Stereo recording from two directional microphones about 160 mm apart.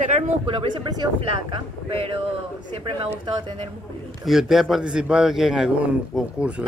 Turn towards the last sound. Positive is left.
turn(degrees=-5)  # may be behind; listen again after turning